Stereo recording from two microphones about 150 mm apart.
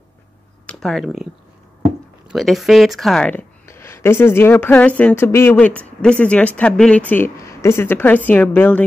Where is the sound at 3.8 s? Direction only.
15° left (ahead or behind).